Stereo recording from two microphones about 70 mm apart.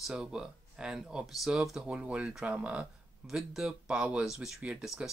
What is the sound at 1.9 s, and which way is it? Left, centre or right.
Speech, centre.